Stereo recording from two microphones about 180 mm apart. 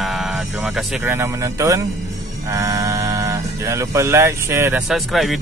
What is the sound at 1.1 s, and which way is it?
Speech, 15° right (ahead or behind).